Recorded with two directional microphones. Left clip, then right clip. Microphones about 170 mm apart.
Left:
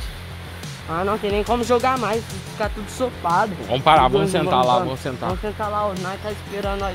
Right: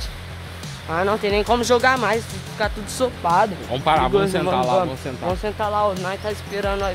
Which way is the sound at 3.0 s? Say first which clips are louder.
Right 2 dB; 15° right (ahead or behind).